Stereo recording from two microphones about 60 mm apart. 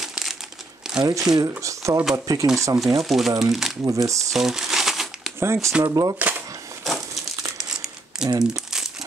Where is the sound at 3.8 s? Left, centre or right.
Right.